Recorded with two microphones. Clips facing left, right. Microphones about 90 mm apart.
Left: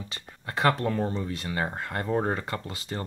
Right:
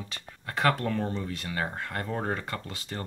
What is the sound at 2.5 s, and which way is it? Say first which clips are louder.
Speech: left 2 dB; 5° left (ahead or behind).